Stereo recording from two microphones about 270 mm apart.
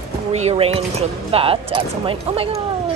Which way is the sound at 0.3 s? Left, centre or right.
Right.